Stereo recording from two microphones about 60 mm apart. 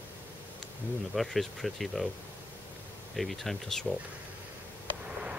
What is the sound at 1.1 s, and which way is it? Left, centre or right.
Speech, centre.